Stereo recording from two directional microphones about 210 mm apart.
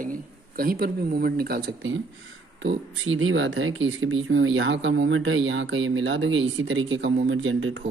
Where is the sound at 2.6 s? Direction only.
65° right (ahead or behind).